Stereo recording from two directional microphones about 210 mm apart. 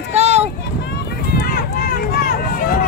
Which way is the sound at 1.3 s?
45° left (ahead or behind).